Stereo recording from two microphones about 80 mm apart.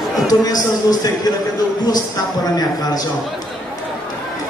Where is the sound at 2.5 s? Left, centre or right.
Left.